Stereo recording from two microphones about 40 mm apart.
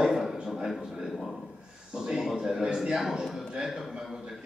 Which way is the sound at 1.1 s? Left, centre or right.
Centre.